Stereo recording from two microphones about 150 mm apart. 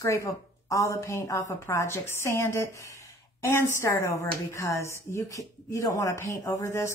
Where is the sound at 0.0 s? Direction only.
20° left (ahead or behind).